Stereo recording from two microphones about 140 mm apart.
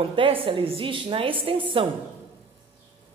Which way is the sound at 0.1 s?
40° right (ahead or behind).